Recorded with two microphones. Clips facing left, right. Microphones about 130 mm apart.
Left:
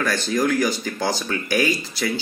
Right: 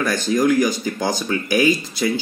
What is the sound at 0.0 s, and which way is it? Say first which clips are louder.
Speech: right 3 dB; 15° right (ahead or behind).